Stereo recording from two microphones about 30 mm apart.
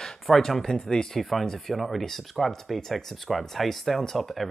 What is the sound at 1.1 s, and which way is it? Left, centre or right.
Speech, centre.